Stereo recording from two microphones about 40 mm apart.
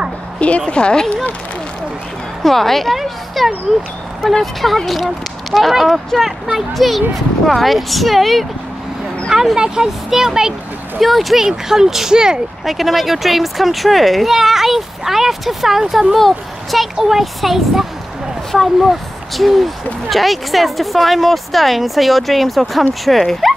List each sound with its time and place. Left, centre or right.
0.4 s a woman's voice: left
2.4 s speech: centre
9.3 s speech: centre
11.0 s speech: centre
11.4 s speech: centre
12.6 s speech: centre